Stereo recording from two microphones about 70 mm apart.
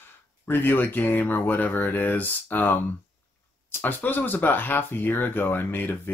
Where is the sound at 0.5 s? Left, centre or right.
Left.